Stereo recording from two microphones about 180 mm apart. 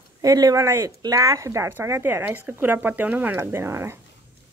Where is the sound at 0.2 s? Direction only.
20° right (ahead or behind).